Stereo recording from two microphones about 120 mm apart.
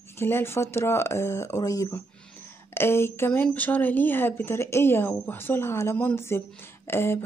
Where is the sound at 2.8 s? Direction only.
20° left (ahead or behind).